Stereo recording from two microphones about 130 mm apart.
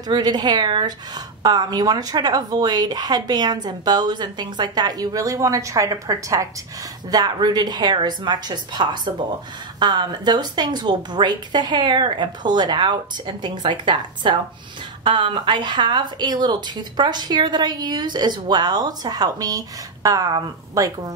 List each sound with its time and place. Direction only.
0.1 s a woman's voice: 30° right (ahead or behind)